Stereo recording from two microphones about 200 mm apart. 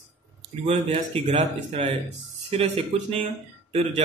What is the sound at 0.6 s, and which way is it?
A man's voice, 30° right (ahead or behind).